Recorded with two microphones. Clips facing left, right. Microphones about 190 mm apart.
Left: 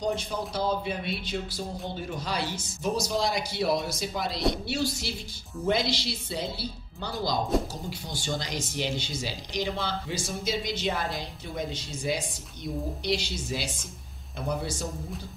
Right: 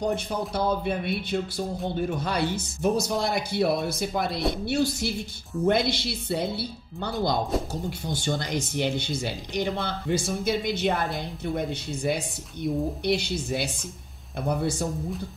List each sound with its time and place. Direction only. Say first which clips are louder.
0.0 s speech: right 3 dB; 60° right (ahead or behind)